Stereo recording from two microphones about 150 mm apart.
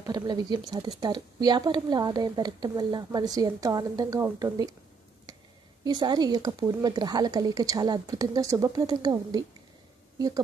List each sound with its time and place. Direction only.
0.0 s speech: 30° right (ahead or behind)
5.9 s a woman's voice: 30° right (ahead or behind)